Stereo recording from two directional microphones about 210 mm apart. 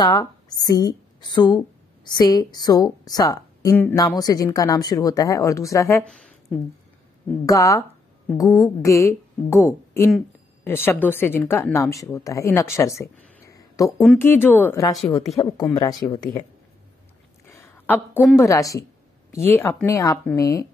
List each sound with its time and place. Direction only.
0.0 s a woman's voice: 20° left (ahead or behind)
7.4 s a woman's voice: 15° left (ahead or behind)
17.5 s a sound: 10° left (ahead or behind)
18.4 s a woman's voice: 15° left (ahead or behind)